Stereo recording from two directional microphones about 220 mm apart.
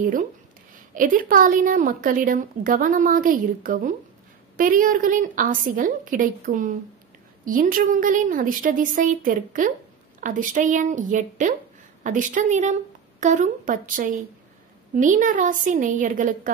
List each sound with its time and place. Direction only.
0.0 s a woman's voice: 35° right (ahead or behind)